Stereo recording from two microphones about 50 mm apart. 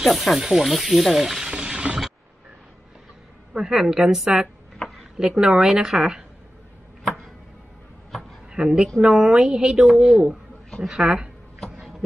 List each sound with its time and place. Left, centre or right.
0.0 s speech: centre
1.5 s a sound: centre
3.5 s a woman's voice: centre
8.5 s a woman's voice: centre